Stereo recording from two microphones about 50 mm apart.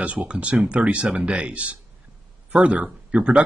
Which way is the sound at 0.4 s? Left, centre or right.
Right.